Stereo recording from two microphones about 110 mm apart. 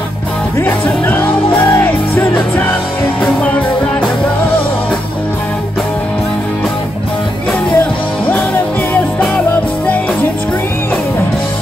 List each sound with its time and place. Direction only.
0.6 s music: 20° left (ahead or behind)
7.7 s music: 15° left (ahead or behind)